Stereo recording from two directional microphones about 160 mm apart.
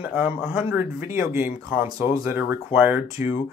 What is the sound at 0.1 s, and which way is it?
Speech, 5° right (ahead or behind).